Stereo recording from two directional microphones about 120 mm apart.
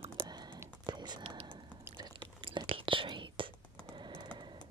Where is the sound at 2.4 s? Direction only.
45° right (ahead or behind).